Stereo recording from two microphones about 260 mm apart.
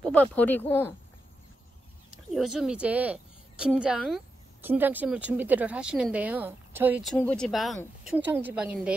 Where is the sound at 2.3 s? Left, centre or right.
Centre.